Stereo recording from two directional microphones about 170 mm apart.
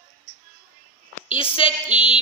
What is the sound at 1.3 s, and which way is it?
Speech, 30° left (ahead or behind).